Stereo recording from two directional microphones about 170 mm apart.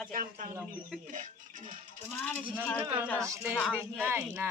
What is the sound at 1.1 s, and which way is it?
Speech, 50° right (ahead or behind).